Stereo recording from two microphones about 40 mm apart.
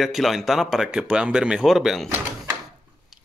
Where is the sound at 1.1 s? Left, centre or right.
Right.